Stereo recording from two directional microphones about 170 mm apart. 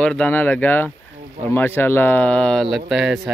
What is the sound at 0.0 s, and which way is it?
Speech, 5° left (ahead or behind).